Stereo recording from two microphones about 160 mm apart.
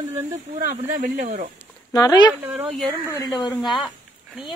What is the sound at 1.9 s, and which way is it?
Speech, 25° left (ahead or behind).